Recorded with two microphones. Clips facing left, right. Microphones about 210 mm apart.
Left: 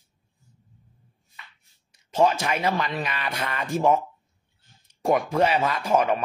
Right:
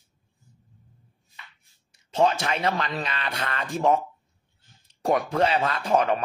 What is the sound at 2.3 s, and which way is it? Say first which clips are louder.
A man's voice: left 1 dB; 10° left (ahead or behind).